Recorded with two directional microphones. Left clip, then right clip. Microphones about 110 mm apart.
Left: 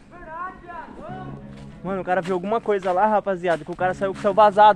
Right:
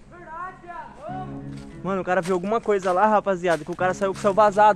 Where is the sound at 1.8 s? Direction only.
40° right (ahead or behind).